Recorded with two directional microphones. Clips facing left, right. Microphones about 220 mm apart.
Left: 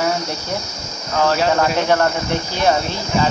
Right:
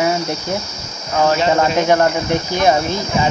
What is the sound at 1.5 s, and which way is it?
Cricket, 15° right (ahead or behind).